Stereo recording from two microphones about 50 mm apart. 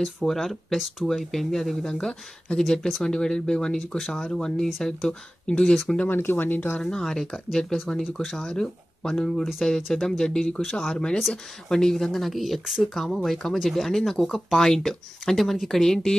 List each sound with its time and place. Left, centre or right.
0.0 s speech: centre
1.9 s speech: centre
5.5 s speech: centre
6.0 s speech: left
6.8 s speech: centre